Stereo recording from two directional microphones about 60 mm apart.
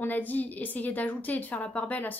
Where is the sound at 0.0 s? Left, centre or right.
Left.